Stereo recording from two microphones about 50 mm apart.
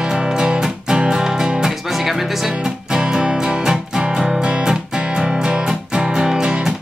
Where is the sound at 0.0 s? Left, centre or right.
Centre.